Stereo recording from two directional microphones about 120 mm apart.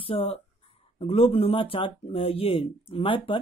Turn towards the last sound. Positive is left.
turn(degrees=45)  # may be behind; listen again after turning